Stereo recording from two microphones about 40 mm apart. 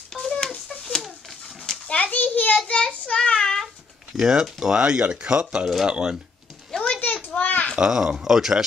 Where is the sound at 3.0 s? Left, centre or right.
Left.